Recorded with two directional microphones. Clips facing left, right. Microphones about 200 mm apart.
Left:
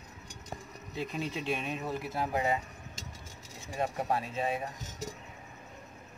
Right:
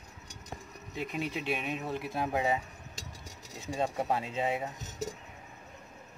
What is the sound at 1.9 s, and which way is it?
Speech, 20° right (ahead or behind).